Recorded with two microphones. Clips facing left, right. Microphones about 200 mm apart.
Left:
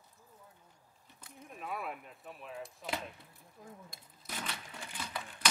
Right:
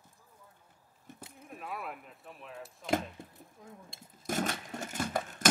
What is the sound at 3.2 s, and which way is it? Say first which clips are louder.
Chop: right 10 dB; 45° right (ahead or behind).